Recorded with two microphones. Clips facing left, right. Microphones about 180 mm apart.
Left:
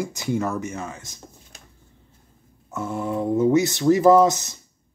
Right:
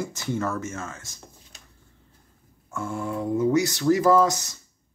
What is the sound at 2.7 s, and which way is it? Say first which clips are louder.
Speech: left 3 dB; 20° left (ahead or behind).